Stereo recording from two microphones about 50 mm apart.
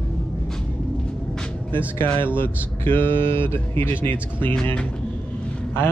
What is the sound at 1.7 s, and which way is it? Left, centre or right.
Speech, left.